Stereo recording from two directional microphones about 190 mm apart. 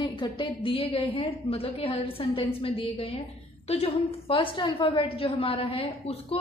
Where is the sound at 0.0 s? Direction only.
25° left (ahead or behind).